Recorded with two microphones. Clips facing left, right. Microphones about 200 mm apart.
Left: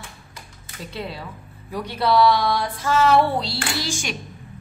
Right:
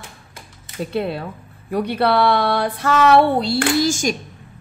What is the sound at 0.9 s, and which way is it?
A woman's voice, 60° right (ahead or behind).